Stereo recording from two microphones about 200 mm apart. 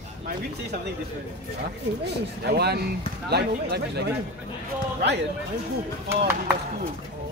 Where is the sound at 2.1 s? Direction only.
55° right (ahead or behind).